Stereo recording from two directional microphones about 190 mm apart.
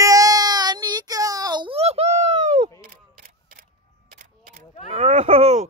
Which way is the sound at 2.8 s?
50° right (ahead or behind).